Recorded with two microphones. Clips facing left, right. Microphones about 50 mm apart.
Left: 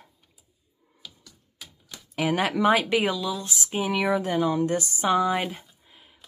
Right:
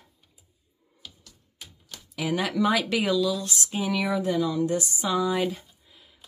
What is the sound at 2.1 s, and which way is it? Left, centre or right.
Speech, left.